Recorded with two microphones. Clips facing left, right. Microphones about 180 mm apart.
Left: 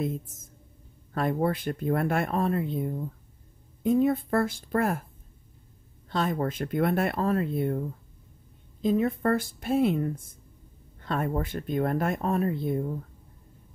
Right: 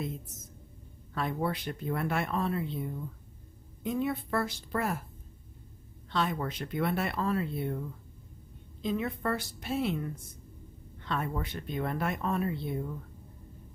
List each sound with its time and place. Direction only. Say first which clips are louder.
0.0 s speech: left 7 dB; 50° left (ahead or behind)
6.0 s speech: left 4 dB; 45° left (ahead or behind)
8.8 s speech: left 7 dB; 45° left (ahead or behind)